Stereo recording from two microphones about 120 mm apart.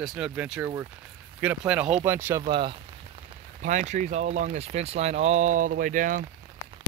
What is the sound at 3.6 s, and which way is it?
Speech, 90° right.